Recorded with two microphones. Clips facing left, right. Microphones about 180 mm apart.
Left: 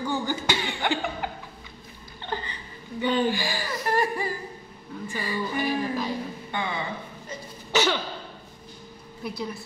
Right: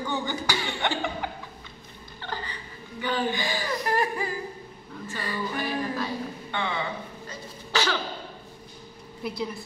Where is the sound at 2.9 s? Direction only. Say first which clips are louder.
Left 4 dB; 25° left (ahead or behind).